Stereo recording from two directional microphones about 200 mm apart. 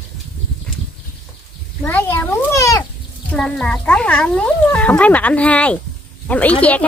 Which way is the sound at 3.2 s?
5° left (ahead or behind).